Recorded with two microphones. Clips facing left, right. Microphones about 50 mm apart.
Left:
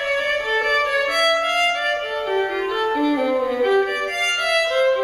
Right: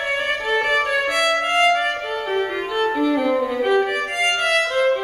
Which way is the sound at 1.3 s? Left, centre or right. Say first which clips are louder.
Right 1 dB; right.